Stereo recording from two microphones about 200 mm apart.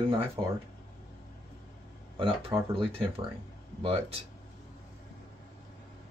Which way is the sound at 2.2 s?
25° right (ahead or behind).